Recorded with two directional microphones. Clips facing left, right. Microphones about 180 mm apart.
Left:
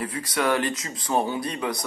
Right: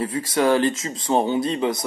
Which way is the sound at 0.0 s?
25° right (ahead or behind).